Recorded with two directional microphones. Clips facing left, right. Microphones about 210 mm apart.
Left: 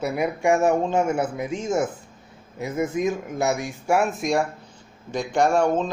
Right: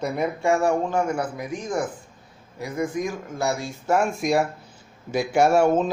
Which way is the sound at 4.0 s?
Centre (ahead or behind).